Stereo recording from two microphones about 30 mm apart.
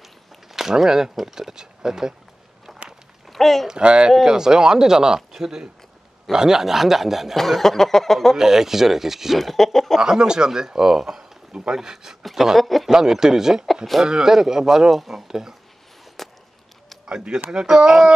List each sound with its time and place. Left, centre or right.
0.0 s a sound: centre
1.2 s speech: centre
3.3 s a sound: centre
3.7 s speech: right
4.2 s a man's voice: centre
7.3 s speech: centre
8.4 s speech: centre
9.4 s speech: centre
10.0 s a man's voice: right
12.2 s speech: centre
12.9 s a man's voice: centre
14.9 s speech: centre
16.2 s a sound: centre
17.0 s a man's voice: right